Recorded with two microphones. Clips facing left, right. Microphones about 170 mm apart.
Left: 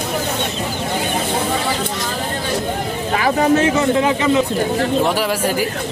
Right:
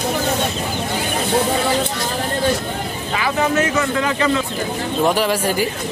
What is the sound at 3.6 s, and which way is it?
Speech, 25° left (ahead or behind).